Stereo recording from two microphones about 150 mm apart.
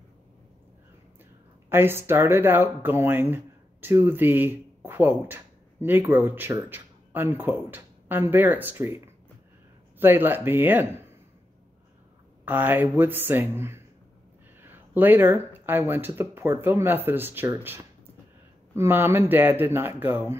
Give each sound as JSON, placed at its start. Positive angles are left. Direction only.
{"t": 1.7, "sound": "speech", "side_deg": -15}
{"t": 12.4, "sound": "speech", "side_deg": -10}